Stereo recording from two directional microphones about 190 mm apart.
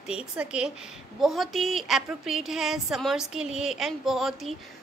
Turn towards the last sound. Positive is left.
turn(degrees=0)  # may be behind; listen again after turning